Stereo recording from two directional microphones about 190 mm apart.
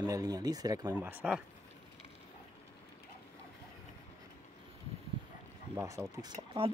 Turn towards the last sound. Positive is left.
turn(degrees=-30)  # may be behind; listen again after turning